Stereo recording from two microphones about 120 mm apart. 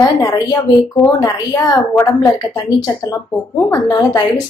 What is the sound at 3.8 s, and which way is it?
Speech, 35° left (ahead or behind).